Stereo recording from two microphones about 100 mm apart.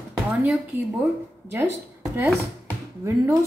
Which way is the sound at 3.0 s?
30° right (ahead or behind).